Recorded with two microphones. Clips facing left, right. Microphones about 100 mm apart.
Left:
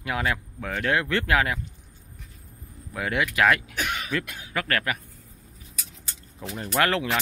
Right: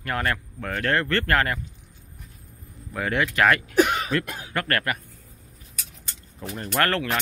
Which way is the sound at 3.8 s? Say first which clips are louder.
Right 10 dB; 40° right (ahead or behind).